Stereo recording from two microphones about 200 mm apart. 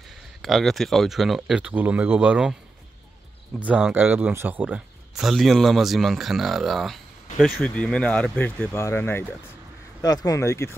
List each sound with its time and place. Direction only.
0.4 s speech: centre (ahead or behind)
3.5 s speech: 5° right (ahead or behind); by 10.8 s 15° left (ahead or behind)